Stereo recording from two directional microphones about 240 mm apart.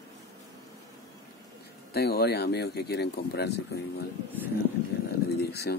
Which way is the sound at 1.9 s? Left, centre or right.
Left.